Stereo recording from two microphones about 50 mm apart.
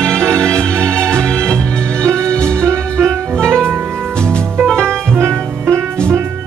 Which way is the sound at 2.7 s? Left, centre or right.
Right.